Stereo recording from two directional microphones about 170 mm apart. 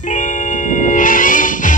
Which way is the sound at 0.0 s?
50° left (ahead or behind).